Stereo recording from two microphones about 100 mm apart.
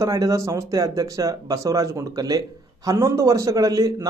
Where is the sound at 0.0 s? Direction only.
35° right (ahead or behind).